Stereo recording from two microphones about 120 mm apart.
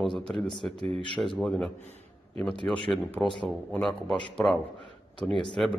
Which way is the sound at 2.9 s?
Centre (ahead or behind).